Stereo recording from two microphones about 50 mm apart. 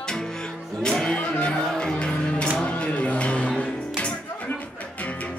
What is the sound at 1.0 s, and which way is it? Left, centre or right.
Music, centre.